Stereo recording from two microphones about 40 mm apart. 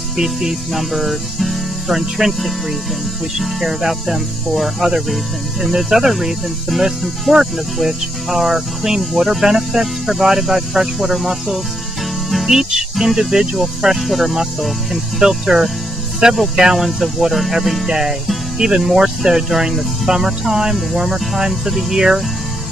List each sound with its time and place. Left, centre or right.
0.2 s speech: centre
16.7 s speech: centre